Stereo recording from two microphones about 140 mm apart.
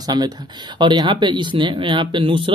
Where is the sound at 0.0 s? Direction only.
30° right (ahead or behind).